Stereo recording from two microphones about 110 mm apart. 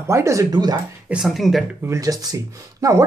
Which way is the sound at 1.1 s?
5° right (ahead or behind).